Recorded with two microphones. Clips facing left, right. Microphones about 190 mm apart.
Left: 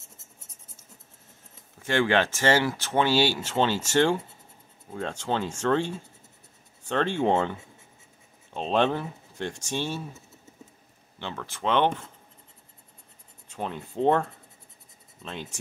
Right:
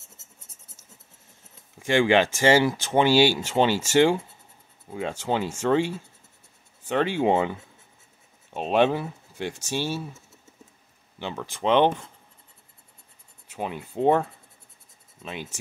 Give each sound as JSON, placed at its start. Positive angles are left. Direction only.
{"t": 1.8, "sound": "speech", "side_deg": -15}
{"t": 8.5, "sound": "speech", "side_deg": -10}
{"t": 13.5, "sound": "speech", "side_deg": -10}